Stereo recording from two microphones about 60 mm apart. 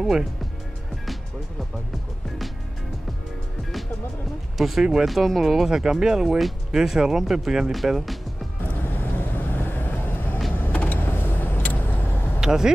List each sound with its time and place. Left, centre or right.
0.0 s speech: centre
4.6 s speech: centre
8.6 s vehicle: left
12.4 s speech: centre